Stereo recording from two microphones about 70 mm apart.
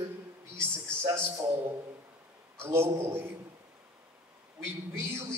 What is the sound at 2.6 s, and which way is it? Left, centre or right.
Speech, right.